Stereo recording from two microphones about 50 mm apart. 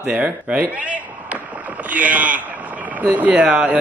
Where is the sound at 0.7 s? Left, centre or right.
Right.